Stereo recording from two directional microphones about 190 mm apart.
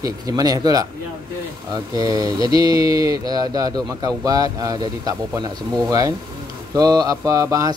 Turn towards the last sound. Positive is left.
turn(degrees=-15)  # may be behind; listen again after turning